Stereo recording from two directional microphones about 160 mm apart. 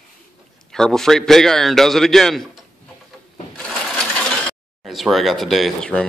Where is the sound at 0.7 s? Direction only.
5° left (ahead or behind).